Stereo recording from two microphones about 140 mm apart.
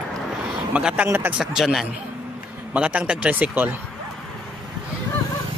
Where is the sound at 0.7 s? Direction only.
10° right (ahead or behind).